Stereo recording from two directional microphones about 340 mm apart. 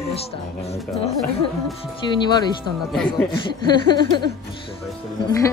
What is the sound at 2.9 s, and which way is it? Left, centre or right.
Speech, centre.